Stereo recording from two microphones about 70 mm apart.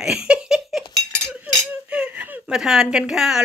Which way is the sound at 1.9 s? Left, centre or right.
Centre.